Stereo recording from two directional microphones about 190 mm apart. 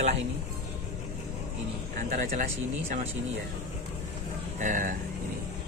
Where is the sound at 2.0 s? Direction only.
40° right (ahead or behind).